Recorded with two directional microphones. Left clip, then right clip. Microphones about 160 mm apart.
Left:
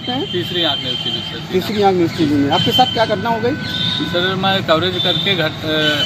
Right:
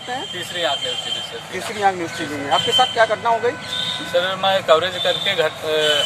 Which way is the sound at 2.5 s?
55° left (ahead or behind).